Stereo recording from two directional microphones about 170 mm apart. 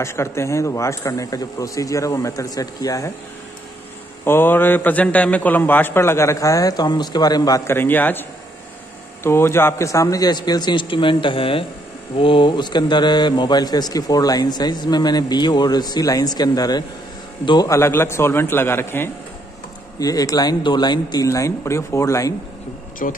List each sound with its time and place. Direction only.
0.0 s a man's voice: 15° left (ahead or behind)
4.2 s a man's voice: 15° left (ahead or behind)
23.0 s a man's voice: 50° left (ahead or behind)